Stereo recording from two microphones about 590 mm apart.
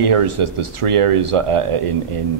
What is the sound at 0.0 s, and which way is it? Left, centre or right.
Speech, right.